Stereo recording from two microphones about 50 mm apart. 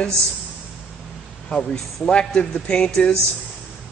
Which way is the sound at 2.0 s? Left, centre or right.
Centre.